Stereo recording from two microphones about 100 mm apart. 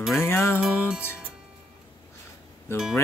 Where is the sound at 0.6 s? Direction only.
10° right (ahead or behind).